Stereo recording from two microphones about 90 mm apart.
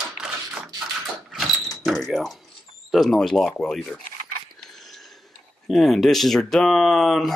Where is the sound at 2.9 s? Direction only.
5° left (ahead or behind).